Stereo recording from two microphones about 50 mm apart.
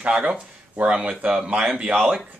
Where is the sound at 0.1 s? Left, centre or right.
Centre.